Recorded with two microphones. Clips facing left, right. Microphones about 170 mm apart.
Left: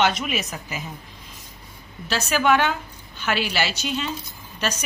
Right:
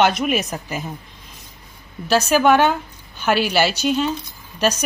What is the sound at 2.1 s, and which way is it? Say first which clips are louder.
Speech: right 6 dB; 45° right (ahead or behind).